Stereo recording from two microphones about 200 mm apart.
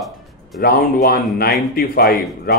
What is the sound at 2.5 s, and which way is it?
Speech, 45° left (ahead or behind).